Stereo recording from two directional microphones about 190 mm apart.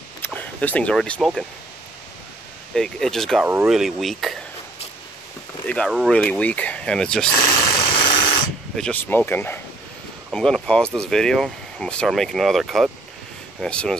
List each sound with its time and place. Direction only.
0.2 s speech: 10° left (ahead or behind)
2.7 s speech: 5° left (ahead or behind)
5.9 s speech: centre (ahead or behind)
7.4 s vehicle: 25° left (ahead or behind)
8.7 s speech: 5° left (ahead or behind)